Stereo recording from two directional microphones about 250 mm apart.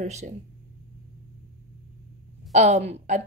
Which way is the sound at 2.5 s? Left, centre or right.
Right.